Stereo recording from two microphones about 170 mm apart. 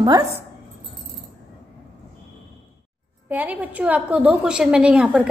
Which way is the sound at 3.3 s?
10° right (ahead or behind).